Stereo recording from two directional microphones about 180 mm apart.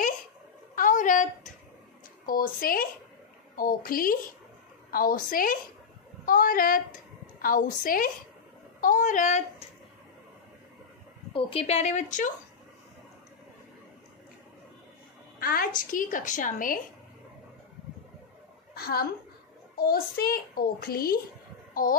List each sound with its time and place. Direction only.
0.7 s a sound: 45° left (ahead or behind)
2.2 s a woman's voice: 50° left (ahead or behind)
11.3 s a woman's voice: 35° left (ahead or behind)
15.3 s a woman's voice: 55° left (ahead or behind)
18.8 s a woman's voice: 60° left (ahead or behind)